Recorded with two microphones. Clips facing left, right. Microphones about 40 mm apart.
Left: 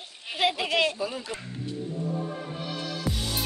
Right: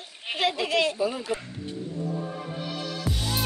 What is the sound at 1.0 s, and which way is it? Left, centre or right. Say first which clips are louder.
Speech: right 5 dB; centre.